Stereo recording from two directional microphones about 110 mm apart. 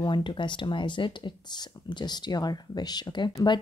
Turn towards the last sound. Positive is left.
turn(degrees=40)  # may be behind; listen again after turning